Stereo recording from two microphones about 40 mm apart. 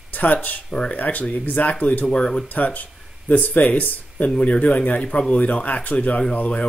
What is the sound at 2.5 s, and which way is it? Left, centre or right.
Speech, left.